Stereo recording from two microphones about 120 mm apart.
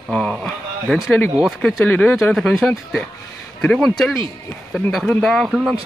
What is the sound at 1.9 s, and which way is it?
Speech, 15° left (ahead or behind).